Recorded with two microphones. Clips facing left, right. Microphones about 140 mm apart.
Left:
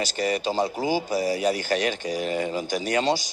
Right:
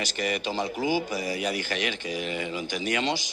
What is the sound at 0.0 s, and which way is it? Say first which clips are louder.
Speech: left 4 dB; 35° left (ahead or behind).